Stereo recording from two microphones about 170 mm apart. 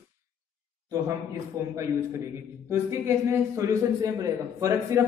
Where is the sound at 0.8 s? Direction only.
20° right (ahead or behind).